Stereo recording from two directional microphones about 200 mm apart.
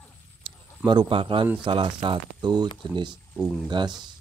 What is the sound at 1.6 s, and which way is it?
Speech, 25° right (ahead or behind).